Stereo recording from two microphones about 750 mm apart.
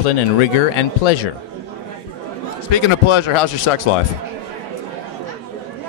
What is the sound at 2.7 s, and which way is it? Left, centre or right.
Speech, left.